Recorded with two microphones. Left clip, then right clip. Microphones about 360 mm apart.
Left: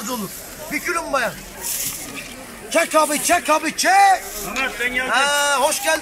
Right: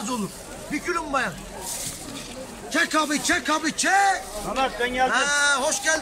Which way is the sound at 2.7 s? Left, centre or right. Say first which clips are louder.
Left 5 dB; centre.